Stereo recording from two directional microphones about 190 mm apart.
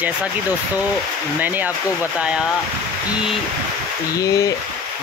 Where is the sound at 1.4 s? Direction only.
10° right (ahead or behind).